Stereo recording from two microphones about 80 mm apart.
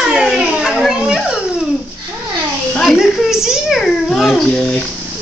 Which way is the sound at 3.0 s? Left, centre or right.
Centre.